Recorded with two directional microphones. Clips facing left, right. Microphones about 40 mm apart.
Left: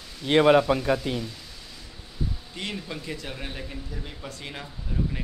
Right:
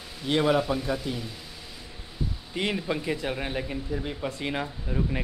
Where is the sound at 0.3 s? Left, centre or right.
Left.